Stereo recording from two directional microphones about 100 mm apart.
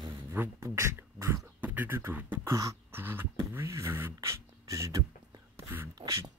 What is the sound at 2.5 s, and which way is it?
Beatboxing, 35° right (ahead or behind).